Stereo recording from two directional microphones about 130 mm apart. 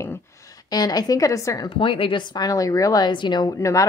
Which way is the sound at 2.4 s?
25° left (ahead or behind).